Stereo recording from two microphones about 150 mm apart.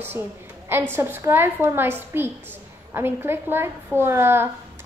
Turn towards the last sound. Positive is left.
turn(degrees=-15)  # may be behind; listen again after turning